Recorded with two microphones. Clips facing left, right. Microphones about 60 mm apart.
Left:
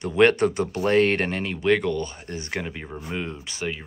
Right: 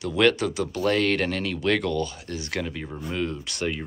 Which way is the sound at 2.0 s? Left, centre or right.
Left.